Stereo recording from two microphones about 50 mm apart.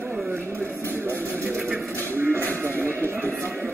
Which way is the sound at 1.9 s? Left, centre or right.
Right.